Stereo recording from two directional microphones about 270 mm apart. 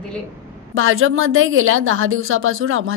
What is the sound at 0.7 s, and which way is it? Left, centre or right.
A woman's voice, right.